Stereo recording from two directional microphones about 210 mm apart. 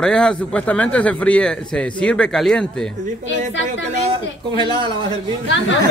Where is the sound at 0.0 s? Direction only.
5° left (ahead or behind).